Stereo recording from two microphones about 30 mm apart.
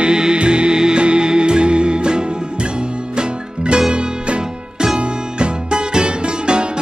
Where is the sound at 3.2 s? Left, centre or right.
Right.